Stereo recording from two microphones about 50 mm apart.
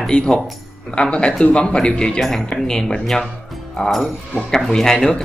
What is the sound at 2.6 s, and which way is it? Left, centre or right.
Speech, centre.